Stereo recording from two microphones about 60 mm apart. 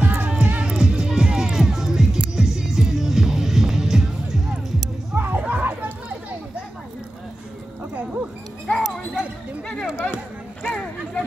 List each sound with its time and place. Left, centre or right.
0.2 s music: right; by 4.8 s centre
5.1 s music: right
5.4 s chatter: right
8.7 s music: centre
9.9 s a sound: left